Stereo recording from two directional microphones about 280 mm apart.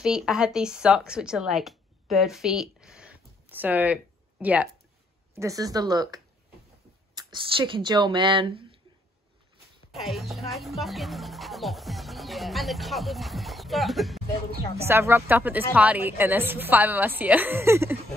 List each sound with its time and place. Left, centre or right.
0.0 s a woman's voice: centre
9.9 s a woman's voice: centre